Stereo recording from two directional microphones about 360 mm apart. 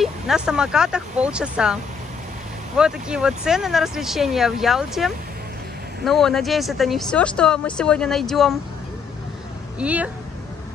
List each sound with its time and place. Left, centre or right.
0.0 s speech: centre
2.8 s speech: centre
9.8 s speech: centre